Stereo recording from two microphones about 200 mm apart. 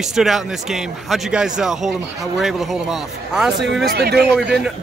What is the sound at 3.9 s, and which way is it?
Speech, 55° right (ahead or behind).